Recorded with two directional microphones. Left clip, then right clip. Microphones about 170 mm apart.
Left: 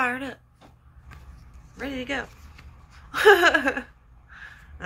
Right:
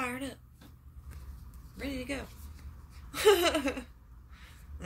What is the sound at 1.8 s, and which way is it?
Speech, 15° right (ahead or behind).